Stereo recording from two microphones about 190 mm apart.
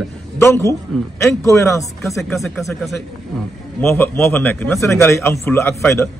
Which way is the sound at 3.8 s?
10° left (ahead or behind).